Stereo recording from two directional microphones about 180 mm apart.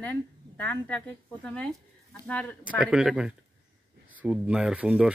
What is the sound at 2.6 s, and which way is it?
Speech, 5° right (ahead or behind).